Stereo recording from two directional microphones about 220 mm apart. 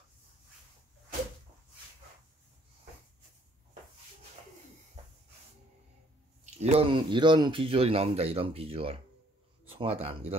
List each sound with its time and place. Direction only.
6.6 s speech: 25° right (ahead or behind)